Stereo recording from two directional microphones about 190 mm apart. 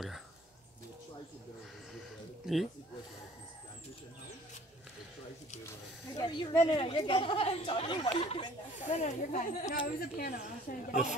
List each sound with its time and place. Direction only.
2.4 s speech: centre (ahead or behind)
6.1 s speech: 20° left (ahead or behind)
8.8 s speech: 40° left (ahead or behind)